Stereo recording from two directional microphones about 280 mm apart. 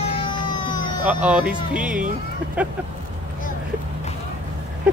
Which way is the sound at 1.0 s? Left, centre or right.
Centre.